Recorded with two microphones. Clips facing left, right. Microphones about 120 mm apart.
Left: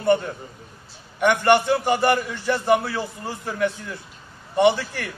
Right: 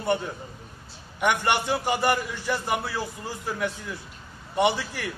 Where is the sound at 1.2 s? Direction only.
10° right (ahead or behind).